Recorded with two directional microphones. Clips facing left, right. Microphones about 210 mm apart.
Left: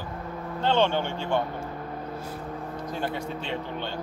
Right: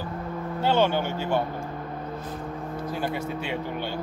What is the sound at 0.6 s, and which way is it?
Speech, 5° right (ahead or behind).